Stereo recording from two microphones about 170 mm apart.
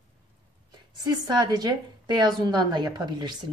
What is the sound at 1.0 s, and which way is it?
A woman's voice, 25° right (ahead or behind).